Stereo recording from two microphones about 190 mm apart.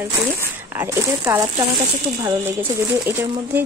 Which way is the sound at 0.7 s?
15° right (ahead or behind).